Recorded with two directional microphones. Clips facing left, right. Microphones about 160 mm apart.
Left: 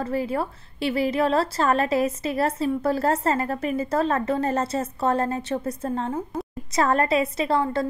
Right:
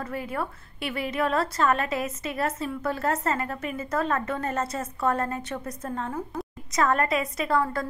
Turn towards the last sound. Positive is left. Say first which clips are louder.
# left 3 dB
turn(degrees=25)  # may be behind; listen again after turning